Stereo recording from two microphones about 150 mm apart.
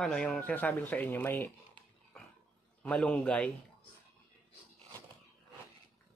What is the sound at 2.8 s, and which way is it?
Speech, 10° left (ahead or behind).